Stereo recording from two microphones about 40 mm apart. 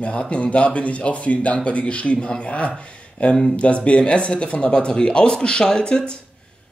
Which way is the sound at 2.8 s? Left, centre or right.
Left.